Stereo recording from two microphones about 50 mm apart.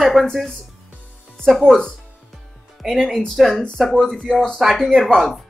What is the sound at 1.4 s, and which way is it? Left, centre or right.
Speech, centre.